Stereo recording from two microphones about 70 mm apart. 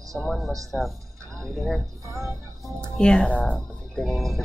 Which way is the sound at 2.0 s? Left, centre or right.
Right.